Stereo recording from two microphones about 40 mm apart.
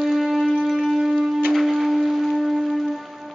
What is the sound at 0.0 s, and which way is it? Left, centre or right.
Shofar, centre.